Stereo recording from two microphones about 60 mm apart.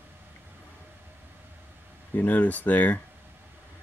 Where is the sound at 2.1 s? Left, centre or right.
Left.